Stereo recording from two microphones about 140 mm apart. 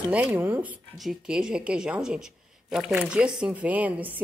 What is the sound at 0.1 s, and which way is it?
Speech, 10° right (ahead or behind).